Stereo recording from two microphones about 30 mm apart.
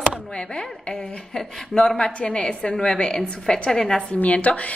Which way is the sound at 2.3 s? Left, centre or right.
Left.